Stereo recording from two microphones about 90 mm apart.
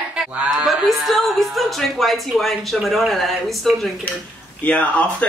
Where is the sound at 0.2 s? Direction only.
5° right (ahead or behind).